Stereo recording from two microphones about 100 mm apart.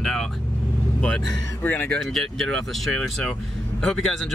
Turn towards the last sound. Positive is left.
turn(degrees=5)  # may be behind; listen again after turning